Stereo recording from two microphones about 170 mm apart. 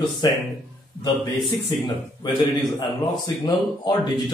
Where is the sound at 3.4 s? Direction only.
25° left (ahead or behind).